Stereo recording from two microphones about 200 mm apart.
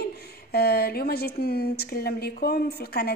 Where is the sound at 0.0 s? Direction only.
50° left (ahead or behind).